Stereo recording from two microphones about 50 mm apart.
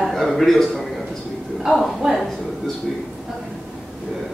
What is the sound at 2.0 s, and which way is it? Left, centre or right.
Speech, centre.